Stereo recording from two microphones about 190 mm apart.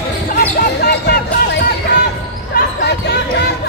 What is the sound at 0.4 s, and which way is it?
Basketball bounce, 60° left (ahead or behind).